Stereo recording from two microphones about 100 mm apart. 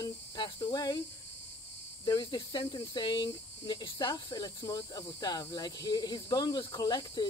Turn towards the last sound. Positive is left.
turn(degrees=45)  # may be behind; listen again after turning